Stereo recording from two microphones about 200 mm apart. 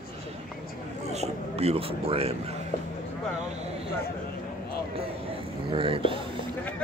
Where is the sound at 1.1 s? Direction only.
30° right (ahead or behind).